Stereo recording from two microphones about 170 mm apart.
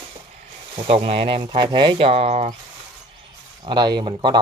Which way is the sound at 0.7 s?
35° right (ahead or behind).